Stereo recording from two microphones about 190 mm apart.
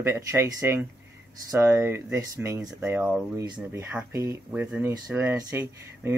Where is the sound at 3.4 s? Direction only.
20° right (ahead or behind).